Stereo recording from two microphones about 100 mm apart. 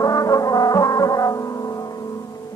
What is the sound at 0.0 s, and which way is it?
Brass instrument, 35° left (ahead or behind).